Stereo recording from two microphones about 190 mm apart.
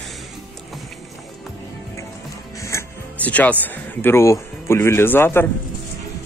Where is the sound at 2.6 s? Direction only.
15° left (ahead or behind).